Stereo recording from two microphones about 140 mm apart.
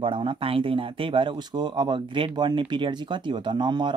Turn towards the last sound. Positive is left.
turn(degrees=-35)  # may be behind; listen again after turning